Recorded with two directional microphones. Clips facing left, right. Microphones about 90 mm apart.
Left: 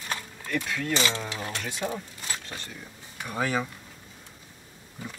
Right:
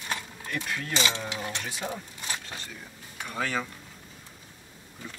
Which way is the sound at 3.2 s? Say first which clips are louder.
Left 3 dB; 10° left (ahead or behind).